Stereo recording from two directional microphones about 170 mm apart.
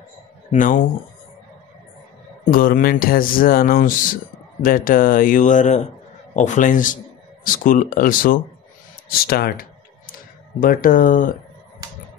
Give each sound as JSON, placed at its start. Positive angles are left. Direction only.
{"t": 0.5, "sound": "speech", "side_deg": 50}
{"t": 2.4, "sound": "speech", "side_deg": 55}
{"t": 9.2, "sound": "computer keyboard", "side_deg": 65}
{"t": 10.6, "sound": "speech", "side_deg": 55}